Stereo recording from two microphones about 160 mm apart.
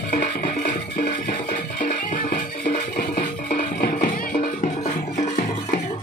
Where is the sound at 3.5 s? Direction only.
65° left (ahead or behind).